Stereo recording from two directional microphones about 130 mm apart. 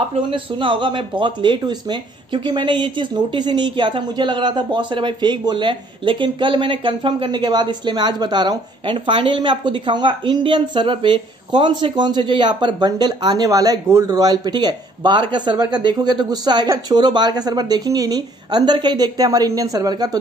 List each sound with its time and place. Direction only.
0.3 s speech: 40° right (ahead or behind)